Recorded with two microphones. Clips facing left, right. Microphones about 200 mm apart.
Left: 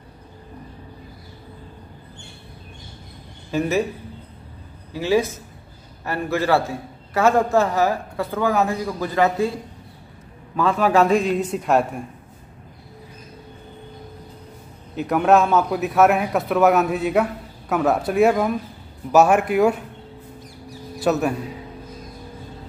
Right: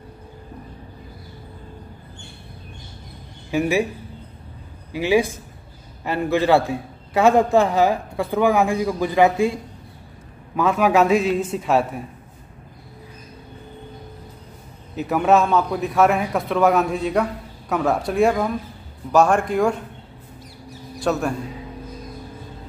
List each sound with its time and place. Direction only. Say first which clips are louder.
3.5 s a man's voice: right 1 dB; 10° right (ahead or behind)
4.9 s a man's voice: right 1 dB; 15° right (ahead or behind)
10.5 s a man's voice: right 1 dB; 10° right (ahead or behind)
15.0 s a man's voice: left 1 dB; centre (ahead or behind)
21.0 s a man's voice: left 2 dB; 5° left (ahead or behind)